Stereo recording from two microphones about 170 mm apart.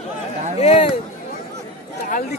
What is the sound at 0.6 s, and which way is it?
Speech, 35° left (ahead or behind).